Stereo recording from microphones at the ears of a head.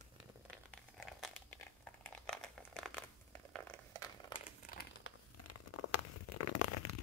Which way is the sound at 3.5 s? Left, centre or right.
Right.